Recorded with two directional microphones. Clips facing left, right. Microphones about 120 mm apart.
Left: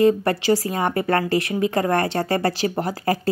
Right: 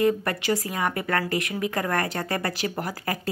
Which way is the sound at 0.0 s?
30° left (ahead or behind).